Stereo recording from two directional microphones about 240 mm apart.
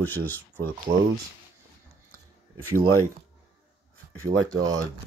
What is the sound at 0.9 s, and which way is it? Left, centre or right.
Speech, right.